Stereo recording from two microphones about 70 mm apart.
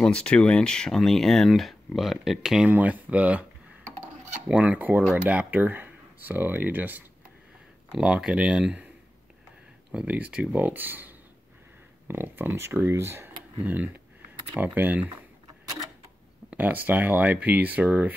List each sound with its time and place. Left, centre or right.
0.0 s speech: centre
2.7 s speech: right
4.5 s speech: centre
8.0 s speech: centre
9.9 s speech: centre; by 13.3 s right
13.6 s speech: right
16.4 s speech: right